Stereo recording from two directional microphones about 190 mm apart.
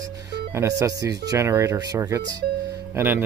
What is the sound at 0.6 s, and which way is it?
Speech, 15° right (ahead or behind).